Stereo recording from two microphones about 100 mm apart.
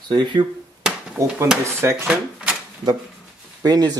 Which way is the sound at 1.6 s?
25° right (ahead or behind).